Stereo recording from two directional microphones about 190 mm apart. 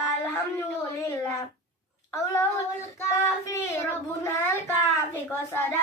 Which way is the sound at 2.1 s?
15° left (ahead or behind).